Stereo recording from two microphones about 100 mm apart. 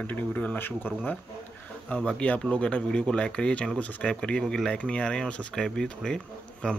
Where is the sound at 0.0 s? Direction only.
15° left (ahead or behind).